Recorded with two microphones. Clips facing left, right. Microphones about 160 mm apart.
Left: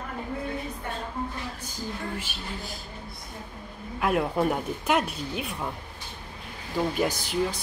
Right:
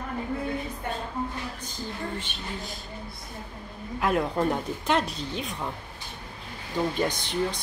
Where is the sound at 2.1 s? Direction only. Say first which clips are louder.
Even; 5° left (ahead or behind).